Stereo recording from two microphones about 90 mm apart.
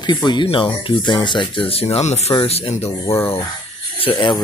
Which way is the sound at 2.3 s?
90° left.